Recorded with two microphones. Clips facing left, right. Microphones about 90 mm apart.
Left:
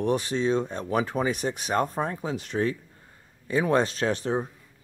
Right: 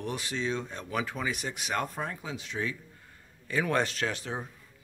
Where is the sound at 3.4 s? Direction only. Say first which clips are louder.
Left 5 dB; 25° left (ahead or behind).